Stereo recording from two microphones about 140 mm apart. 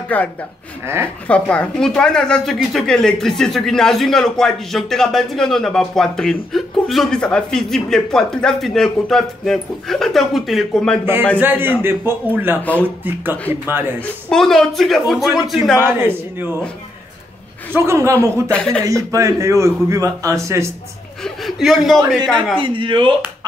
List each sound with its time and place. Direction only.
0.1 s a man's voice: 10° left (ahead or behind)
11.3 s a man's voice: 15° right (ahead or behind)
14.0 s a woman's voice: 5° left (ahead or behind)
15.8 s a man's voice: 15° right (ahead or behind)
17.7 s a man's voice: 20° right (ahead or behind)
18.3 s a man's voice: 10° left (ahead or behind)
19.1 s a man's voice: 20° right (ahead or behind)
21.2 s a woman's voice: centre (ahead or behind)
22.6 s speech: 35° right (ahead or behind)